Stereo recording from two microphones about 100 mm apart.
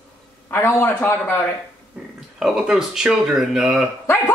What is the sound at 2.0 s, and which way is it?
Speech, 15° right (ahead or behind).